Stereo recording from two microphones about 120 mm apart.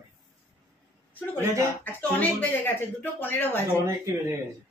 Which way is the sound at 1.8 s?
15° left (ahead or behind).